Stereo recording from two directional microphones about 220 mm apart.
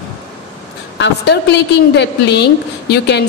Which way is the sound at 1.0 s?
50° left (ahead or behind).